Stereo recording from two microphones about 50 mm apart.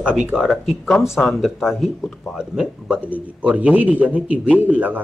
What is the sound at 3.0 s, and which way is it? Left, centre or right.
Speech, right.